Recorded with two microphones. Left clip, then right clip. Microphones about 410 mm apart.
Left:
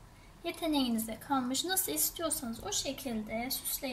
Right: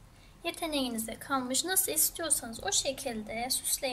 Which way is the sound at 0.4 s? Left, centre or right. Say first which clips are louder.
Even; right.